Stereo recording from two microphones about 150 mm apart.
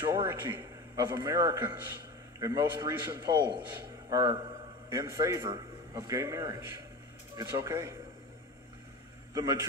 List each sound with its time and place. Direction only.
0.1 s a man's voice: 20° right (ahead or behind)
3.3 s a man's voice: 30° right (ahead or behind)
9.3 s a man's voice: 20° right (ahead or behind)